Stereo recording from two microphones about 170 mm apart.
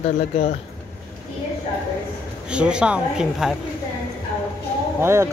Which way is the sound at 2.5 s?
5° right (ahead or behind).